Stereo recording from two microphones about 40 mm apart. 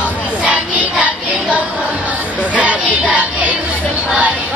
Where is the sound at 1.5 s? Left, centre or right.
Right.